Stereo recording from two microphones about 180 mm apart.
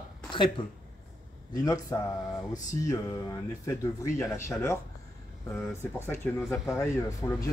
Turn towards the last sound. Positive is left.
turn(degrees=20)  # may be behind; listen again after turning